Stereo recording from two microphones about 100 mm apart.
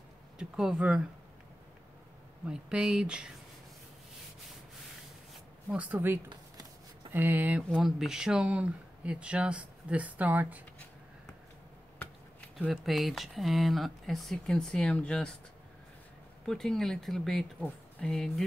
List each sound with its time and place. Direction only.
0.4 s speech: 5° right (ahead or behind)
2.4 s speech: 10° right (ahead or behind)
5.7 s speech: 15° right (ahead or behind)
7.8 s speech: 5° right (ahead or behind)
12.5 s speech: 5° right (ahead or behind)
16.4 s speech: 5° left (ahead or behind)